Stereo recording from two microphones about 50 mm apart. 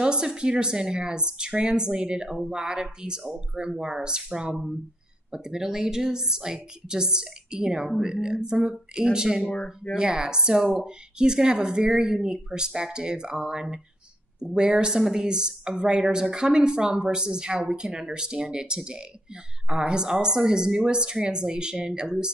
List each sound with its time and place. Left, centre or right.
0.0 s speech: centre
9.5 s speech: centre
9.9 s speech: centre
19.8 s speech: centre